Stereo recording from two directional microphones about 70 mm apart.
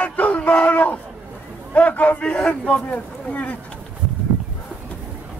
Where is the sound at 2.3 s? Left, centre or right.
Centre.